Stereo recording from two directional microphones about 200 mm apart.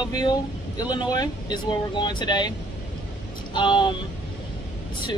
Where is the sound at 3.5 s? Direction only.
25° left (ahead or behind).